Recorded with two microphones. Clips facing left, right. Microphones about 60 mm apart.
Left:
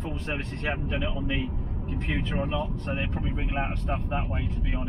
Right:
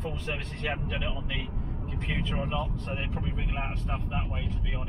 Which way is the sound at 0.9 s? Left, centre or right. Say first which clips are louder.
Left 4 dB; left.